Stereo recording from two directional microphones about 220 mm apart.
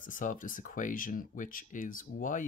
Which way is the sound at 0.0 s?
35° left (ahead or behind).